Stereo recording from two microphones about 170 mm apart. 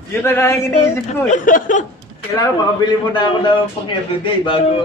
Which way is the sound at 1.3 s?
50° left (ahead or behind).